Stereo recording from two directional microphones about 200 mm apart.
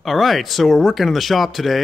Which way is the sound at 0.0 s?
Centre (ahead or behind).